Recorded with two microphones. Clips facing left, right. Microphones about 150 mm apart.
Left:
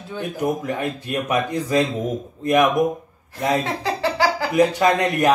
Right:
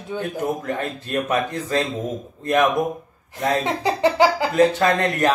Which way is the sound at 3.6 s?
20° right (ahead or behind).